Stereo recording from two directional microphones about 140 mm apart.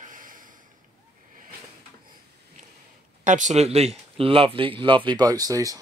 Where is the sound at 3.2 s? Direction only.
65° right (ahead or behind); by 5.8 s 25° right (ahead or behind).